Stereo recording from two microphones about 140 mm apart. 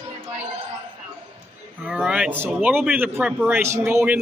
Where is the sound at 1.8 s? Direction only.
5° right (ahead or behind).